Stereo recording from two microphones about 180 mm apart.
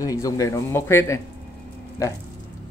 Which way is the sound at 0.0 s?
20° left (ahead or behind).